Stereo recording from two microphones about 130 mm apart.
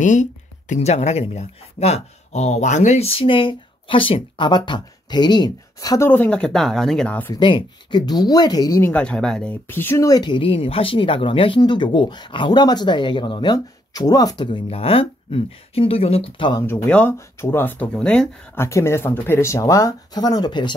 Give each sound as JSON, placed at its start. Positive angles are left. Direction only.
{"t": 0.0, "sound": "speech", "side_deg": 75}
{"t": 6.0, "sound": "speech", "side_deg": 10}
{"t": 7.3, "sound": "speech", "side_deg": 40}
{"t": 8.8, "sound": "speech", "side_deg": 10}
{"t": 16.6, "sound": "speech", "side_deg": 15}
{"t": 18.5, "sound": "speech", "side_deg": 20}